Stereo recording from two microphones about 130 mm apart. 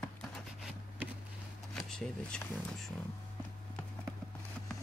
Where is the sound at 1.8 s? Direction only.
5° left (ahead or behind).